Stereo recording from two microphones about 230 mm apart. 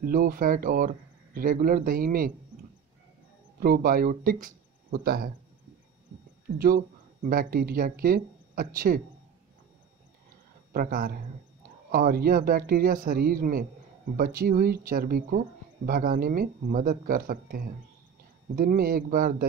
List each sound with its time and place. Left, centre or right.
0.0 s speech: right
3.5 s speech: right
7.2 s speech: right
10.7 s speech: right
18.6 s speech: right